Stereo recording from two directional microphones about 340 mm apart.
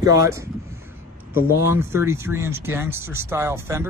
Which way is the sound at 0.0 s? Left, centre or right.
Centre.